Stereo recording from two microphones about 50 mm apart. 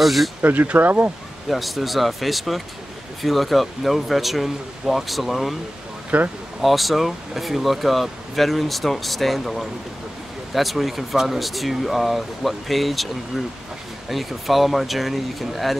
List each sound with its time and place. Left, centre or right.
0.0 s speech: centre
0.4 s speech: right
1.5 s speech: centre
6.0 s speech: right
6.6 s speech: centre